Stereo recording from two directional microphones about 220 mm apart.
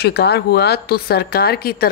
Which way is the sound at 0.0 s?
50° left (ahead or behind).